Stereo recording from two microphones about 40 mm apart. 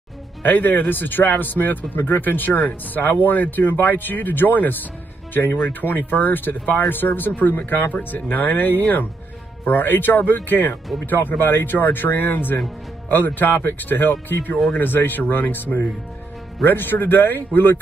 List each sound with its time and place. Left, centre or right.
0.4 s speech: left